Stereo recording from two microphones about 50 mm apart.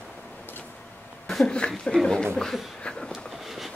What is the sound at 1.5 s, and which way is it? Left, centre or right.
Speech, left.